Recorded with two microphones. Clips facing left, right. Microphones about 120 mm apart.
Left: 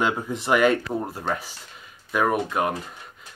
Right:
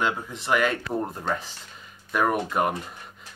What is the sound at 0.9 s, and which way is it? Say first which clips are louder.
Speech: even; 5° left (ahead or behind).